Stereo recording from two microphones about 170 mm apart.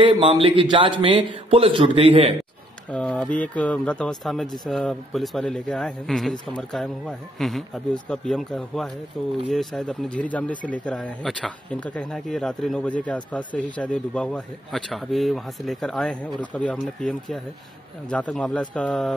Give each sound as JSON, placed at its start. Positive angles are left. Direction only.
{"t": 0.0, "sound": "a man's voice", "side_deg": -30}
{"t": 2.9, "sound": "speech", "side_deg": 5}